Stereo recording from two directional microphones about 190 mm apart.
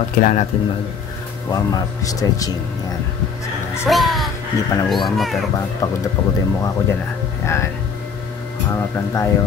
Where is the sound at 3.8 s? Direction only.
Centre (ahead or behind).